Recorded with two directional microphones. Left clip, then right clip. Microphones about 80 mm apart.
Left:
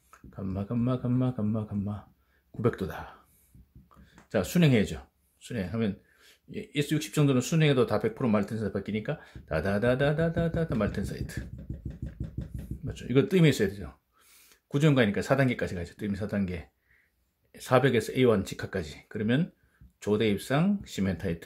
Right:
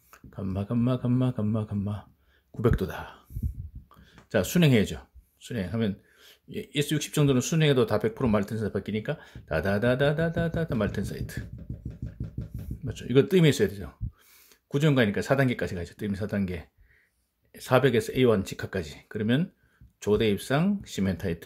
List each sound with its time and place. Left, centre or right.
0.1 s speech: right
12.8 s speech: right
14.7 s speech: right